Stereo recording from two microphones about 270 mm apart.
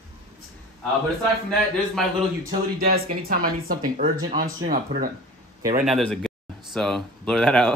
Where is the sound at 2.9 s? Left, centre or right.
Right.